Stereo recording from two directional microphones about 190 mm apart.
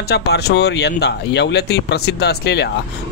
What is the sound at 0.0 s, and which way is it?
Speech, 60° left (ahead or behind).